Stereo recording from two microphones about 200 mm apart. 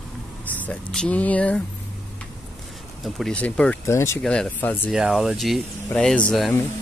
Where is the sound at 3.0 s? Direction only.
5° left (ahead or behind).